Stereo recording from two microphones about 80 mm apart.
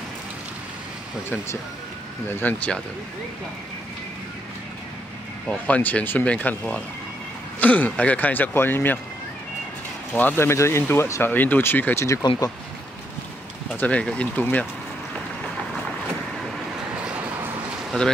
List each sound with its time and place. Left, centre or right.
2.2 s speech: left
5.5 s speech: centre
10.1 s speech: left
11.3 s speech: left
12.2 s speech: left
13.7 s speech: centre